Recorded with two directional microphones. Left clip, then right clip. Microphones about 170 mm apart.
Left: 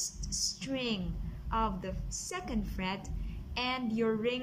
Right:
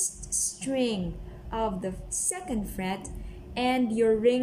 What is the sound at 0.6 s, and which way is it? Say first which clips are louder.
A woman's voice: right 7 dB; 25° right (ahead or behind).